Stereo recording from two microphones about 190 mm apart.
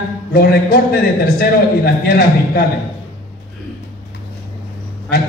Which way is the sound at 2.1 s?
55° left (ahead or behind).